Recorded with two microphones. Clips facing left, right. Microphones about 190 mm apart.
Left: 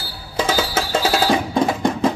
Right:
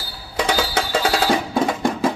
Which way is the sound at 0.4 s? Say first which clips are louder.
Left 1 dB; 5° left (ahead or behind).